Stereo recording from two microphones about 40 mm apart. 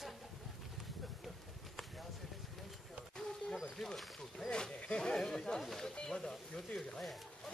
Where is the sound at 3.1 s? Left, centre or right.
Centre.